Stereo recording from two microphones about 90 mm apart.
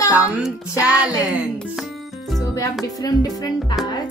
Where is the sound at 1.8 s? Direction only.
Centre (ahead or behind).